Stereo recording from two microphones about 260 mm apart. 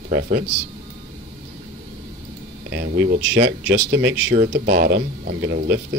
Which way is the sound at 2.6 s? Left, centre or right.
Right.